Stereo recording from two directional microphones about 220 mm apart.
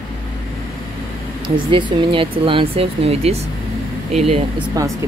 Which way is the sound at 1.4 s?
20° right (ahead or behind).